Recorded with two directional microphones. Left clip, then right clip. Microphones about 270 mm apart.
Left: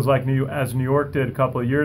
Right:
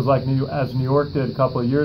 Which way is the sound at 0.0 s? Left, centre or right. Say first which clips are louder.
Right 1 dB; left.